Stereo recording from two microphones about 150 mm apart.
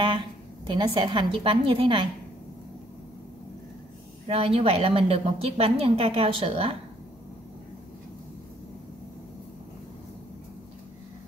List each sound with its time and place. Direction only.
0.7 s a woman's voice: 30° right (ahead or behind)
4.3 s a woman's voice: 40° right (ahead or behind)